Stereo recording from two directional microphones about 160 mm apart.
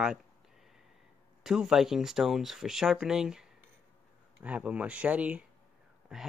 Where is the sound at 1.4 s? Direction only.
5° right (ahead or behind).